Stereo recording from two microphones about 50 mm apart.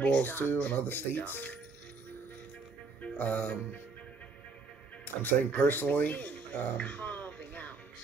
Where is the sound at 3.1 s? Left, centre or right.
Left.